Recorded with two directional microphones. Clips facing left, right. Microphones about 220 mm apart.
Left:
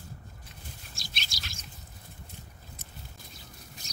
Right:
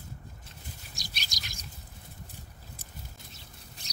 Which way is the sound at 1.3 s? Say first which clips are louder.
Left 1 dB; 20° right (ahead or behind).